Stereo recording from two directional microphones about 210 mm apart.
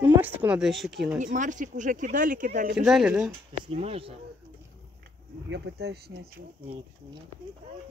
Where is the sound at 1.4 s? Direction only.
35° right (ahead or behind).